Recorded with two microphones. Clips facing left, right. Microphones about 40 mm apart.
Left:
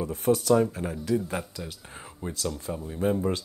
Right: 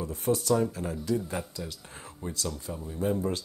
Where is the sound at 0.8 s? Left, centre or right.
Left.